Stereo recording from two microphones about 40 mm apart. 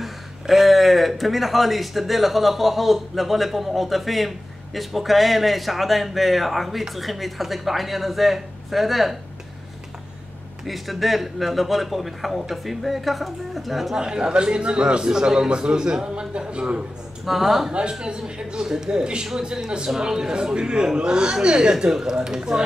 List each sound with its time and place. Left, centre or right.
0.0 s speech: centre
10.6 s speech: centre
13.9 s a man's voice: centre
17.2 s speech: centre
17.9 s a man's voice: right